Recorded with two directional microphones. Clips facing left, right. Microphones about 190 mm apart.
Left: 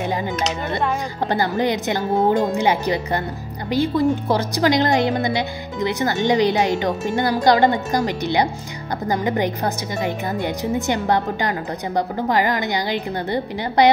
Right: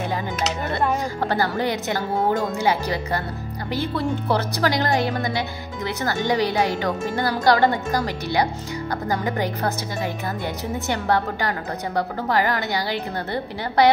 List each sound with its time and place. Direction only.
1.3 s a woman's voice: 15° left (ahead or behind)